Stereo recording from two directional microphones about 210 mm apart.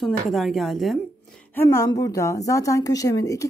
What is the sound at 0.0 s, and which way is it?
A woman's voice, centre (ahead or behind).